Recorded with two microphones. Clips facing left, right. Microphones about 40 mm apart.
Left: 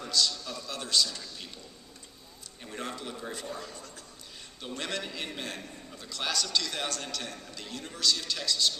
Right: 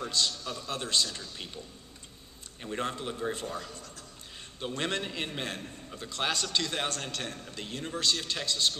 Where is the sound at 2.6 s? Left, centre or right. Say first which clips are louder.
Right 4 dB; right.